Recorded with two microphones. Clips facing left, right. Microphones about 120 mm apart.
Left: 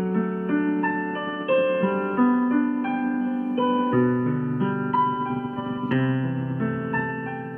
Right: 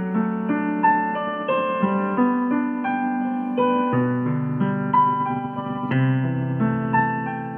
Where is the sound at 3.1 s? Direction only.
55° right (ahead or behind).